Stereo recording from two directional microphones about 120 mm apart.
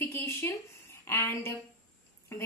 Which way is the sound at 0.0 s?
20° left (ahead or behind).